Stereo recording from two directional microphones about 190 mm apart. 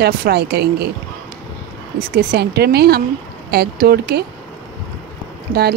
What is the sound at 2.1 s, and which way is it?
Speech, 55° right (ahead or behind).